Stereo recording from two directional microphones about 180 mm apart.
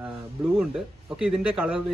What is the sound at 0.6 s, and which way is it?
Speech, 5° right (ahead or behind).